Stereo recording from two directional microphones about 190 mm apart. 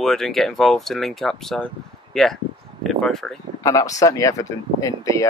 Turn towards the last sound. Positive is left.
turn(degrees=15)  # may be behind; listen again after turning